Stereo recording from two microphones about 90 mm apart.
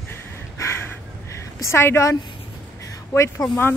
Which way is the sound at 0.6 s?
30° left (ahead or behind).